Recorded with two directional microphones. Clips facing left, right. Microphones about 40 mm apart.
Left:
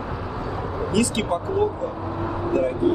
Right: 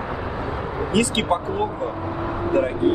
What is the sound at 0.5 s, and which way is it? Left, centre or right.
Speech, right.